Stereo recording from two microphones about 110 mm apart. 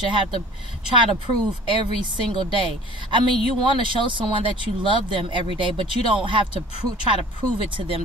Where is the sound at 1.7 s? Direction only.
45° right (ahead or behind).